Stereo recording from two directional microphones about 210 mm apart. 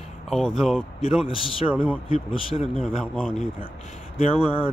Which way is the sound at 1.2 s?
25° left (ahead or behind).